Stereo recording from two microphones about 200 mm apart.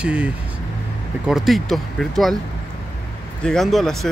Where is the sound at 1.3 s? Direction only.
Centre (ahead or behind).